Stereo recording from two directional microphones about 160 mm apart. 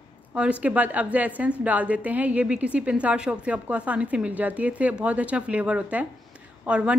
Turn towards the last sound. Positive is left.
turn(degrees=-5)  # may be behind; listen again after turning